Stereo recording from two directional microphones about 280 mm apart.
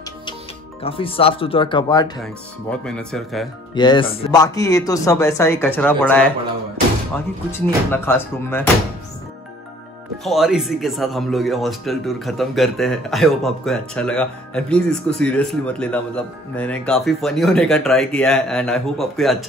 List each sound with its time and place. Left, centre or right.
0.8 s speech: centre
2.7 s speech: centre
3.7 s speech: centre
7.5 s speech: centre
10.2 s speech: centre